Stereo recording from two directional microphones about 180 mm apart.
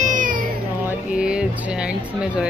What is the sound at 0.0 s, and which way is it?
Cat, 45° right (ahead or behind).